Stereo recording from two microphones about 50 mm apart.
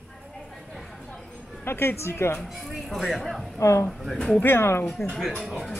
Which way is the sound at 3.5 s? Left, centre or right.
Left.